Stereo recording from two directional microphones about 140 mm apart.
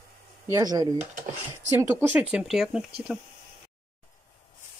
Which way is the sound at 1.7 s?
15° right (ahead or behind).